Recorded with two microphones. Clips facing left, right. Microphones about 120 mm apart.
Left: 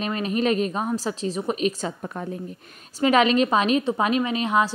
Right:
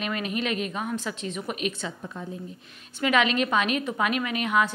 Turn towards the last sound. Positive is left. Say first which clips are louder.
# left 3 dB
turn(degrees=30)  # may be behind; listen again after turning